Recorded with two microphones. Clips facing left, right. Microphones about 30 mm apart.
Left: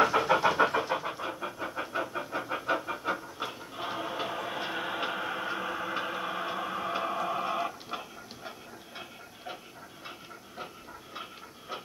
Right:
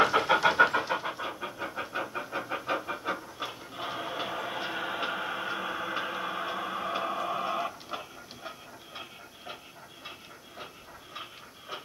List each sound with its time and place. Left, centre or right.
0.2 s vehicle: right
0.7 s vehicle: right
1.0 s vehicle: centre